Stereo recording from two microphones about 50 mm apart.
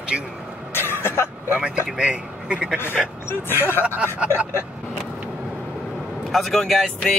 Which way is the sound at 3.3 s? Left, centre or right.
Left.